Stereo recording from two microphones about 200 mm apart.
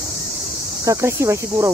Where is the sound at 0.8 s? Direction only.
15° right (ahead or behind).